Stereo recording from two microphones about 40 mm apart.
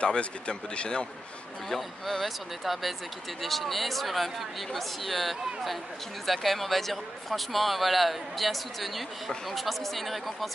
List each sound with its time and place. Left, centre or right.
0.0 s speech: left
1.7 s a man's voice: centre